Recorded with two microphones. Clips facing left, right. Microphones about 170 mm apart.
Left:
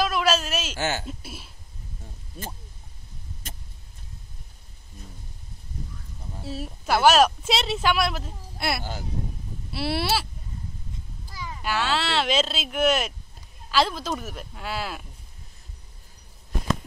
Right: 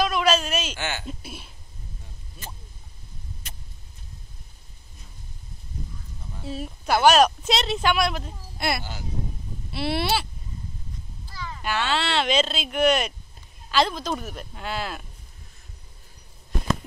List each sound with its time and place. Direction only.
0.0 s a sound: 5° left (ahead or behind)
0.7 s speech: 40° left (ahead or behind)
1.0 s a woman's voice: 5° left (ahead or behind)
3.4 s vehicle: 45° left (ahead or behind)
6.4 s a woman's voice: 5° left (ahead or behind)
11.2 s a woman's voice: 10° left (ahead or behind)